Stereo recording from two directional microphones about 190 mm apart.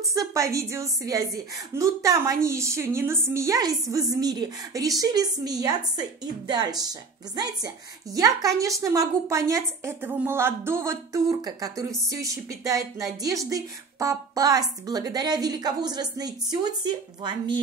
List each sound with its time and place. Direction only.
0.0 s a woman's voice: 15° right (ahead or behind)